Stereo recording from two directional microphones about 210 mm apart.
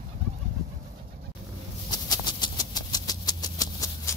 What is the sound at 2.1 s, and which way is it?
Vehicle, 20° left (ahead or behind).